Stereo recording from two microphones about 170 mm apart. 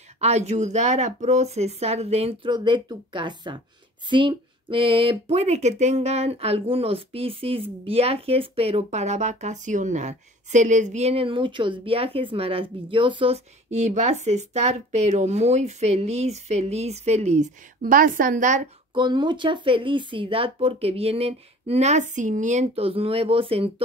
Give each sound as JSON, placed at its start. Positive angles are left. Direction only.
{"t": 0.2, "sound": "speech", "side_deg": -40}
{"t": 18.9, "sound": "speech", "side_deg": -25}